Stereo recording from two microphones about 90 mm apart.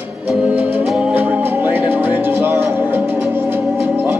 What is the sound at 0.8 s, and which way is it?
Music, 5° right (ahead or behind).